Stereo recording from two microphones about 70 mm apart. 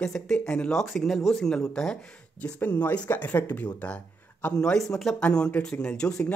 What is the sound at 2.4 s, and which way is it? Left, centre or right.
Speech, left.